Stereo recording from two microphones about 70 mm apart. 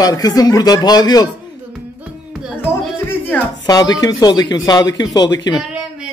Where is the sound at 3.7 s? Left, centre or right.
Left.